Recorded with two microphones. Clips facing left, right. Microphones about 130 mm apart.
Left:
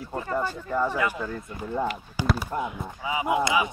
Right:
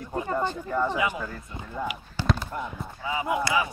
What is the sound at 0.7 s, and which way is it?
Speech, 10° left (ahead or behind).